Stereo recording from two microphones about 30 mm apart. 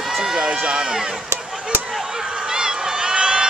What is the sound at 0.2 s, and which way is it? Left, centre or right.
Run, right.